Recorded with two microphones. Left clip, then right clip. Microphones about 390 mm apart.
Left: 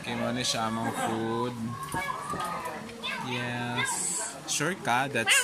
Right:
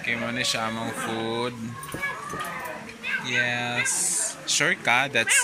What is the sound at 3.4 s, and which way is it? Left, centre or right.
Speech, centre.